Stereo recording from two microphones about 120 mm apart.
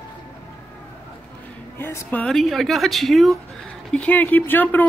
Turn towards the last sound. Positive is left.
turn(degrees=15)  # may be behind; listen again after turning